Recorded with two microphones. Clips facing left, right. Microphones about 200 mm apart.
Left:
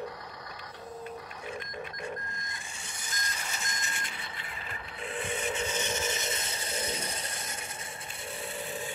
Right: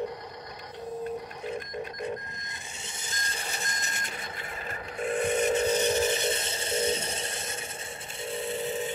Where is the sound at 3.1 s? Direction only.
30° right (ahead or behind).